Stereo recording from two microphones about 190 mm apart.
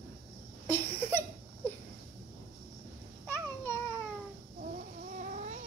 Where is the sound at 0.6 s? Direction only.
10° left (ahead or behind).